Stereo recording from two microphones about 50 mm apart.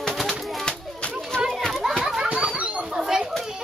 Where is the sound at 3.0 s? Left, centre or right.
Centre.